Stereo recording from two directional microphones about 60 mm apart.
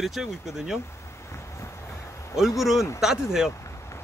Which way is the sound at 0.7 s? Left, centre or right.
Left.